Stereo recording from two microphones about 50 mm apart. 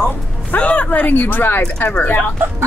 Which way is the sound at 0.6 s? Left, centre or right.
Left.